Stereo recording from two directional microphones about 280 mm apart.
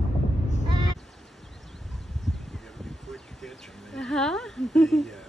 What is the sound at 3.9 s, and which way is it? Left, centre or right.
Speech, centre.